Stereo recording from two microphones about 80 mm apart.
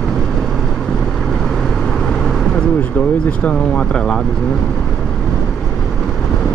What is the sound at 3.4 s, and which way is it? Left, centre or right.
Speech, centre.